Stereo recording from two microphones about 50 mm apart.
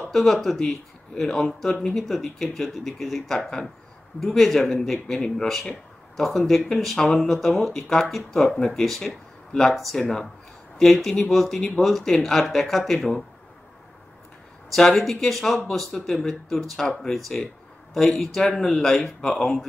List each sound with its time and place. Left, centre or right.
0.1 s speech: centre
14.7 s speech: centre
17.9 s speech: centre